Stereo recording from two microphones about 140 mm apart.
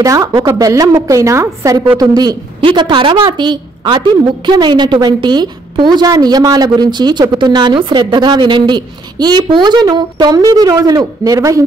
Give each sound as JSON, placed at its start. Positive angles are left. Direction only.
{"t": 0.0, "sound": "a woman's voice", "side_deg": -25}